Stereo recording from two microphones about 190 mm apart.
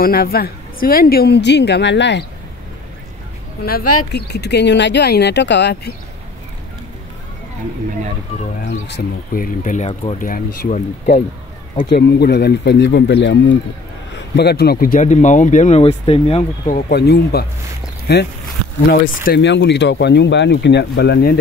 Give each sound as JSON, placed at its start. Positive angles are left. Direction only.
{"t": 0.0, "sound": "speech", "side_deg": 50}
{"t": 3.6, "sound": "speech", "side_deg": 55}
{"t": 8.6, "sound": "speech", "side_deg": 65}
{"t": 16.9, "sound": "speech", "side_deg": 60}